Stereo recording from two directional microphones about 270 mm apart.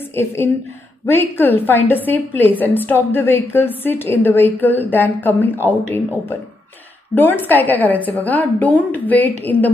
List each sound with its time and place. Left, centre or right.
0.1 s a woman's voice: centre